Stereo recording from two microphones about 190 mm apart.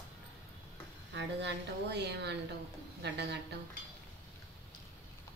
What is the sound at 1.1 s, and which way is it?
A woman's voice, 65° right (ahead or behind).